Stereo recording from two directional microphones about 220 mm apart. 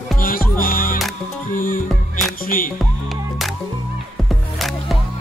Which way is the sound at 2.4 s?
40° left (ahead or behind).